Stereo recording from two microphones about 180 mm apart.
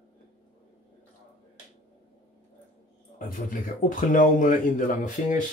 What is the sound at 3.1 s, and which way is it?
Speech, 50° left (ahead or behind).